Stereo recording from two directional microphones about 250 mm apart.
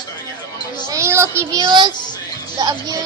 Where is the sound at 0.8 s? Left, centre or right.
Centre.